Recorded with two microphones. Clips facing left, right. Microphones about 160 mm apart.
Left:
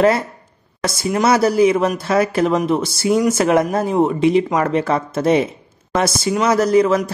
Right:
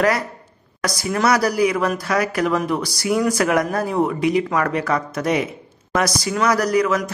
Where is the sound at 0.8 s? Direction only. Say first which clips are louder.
Left 3 dB; 25° left (ahead or behind).